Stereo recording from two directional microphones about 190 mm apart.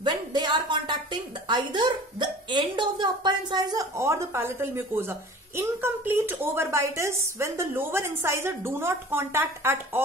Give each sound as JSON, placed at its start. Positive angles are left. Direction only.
{"t": 0.0, "sound": "speech", "side_deg": -25}